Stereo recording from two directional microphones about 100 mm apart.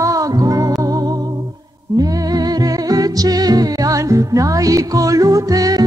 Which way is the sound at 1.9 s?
40° right (ahead or behind).